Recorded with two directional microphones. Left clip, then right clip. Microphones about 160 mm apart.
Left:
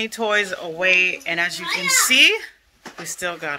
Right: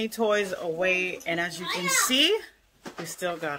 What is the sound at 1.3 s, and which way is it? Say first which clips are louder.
Speech: left 7 dB; 20° right (ahead or behind).